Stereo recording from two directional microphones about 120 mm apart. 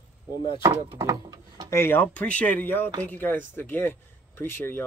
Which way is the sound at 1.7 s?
20° left (ahead or behind).